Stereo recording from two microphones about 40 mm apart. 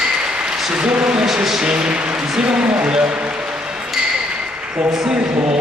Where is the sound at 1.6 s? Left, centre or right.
Right.